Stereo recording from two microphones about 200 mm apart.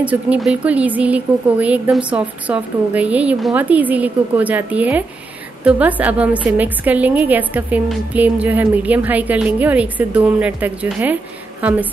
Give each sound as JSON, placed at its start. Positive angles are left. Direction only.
{"t": 0.0, "sound": "a woman's voice", "side_deg": -5}